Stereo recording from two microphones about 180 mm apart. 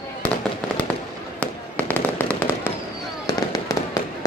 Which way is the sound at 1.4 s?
10° left (ahead or behind).